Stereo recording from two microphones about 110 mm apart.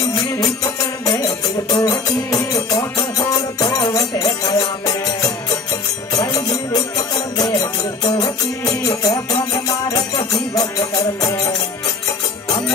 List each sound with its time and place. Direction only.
0.4 s music: 35° left (ahead or behind)
8.0 s music: 40° left (ahead or behind)